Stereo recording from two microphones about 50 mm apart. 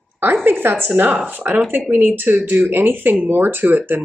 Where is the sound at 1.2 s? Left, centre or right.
Right.